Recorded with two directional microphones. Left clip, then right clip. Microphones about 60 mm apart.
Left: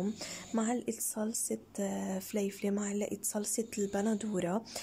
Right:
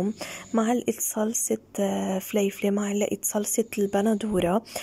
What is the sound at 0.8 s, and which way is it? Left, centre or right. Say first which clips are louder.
Speech: right 10 dB; right.